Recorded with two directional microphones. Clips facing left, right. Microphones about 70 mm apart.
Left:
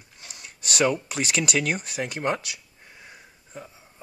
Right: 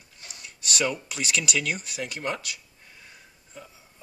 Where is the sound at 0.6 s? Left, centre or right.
Left.